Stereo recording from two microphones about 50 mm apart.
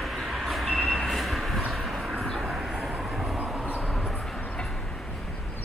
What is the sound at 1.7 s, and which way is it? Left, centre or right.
Vehicle, centre.